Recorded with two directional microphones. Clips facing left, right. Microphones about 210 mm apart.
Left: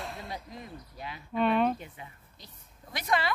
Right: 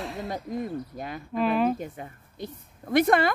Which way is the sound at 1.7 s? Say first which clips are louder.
Right 9 dB; 45° right (ahead or behind).